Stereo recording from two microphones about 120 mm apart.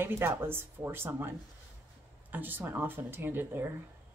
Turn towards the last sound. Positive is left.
turn(degrees=-15)  # may be behind; listen again after turning